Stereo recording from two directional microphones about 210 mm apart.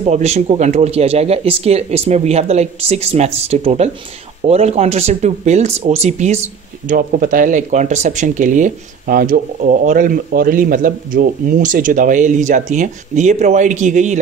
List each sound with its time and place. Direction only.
0.0 s speech: 30° right (ahead or behind)